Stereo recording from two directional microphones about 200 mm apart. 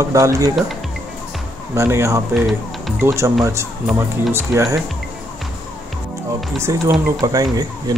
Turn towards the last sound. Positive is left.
turn(degrees=-20)  # may be behind; listen again after turning